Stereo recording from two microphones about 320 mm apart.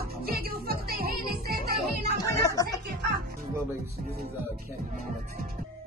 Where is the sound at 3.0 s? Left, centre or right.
Right.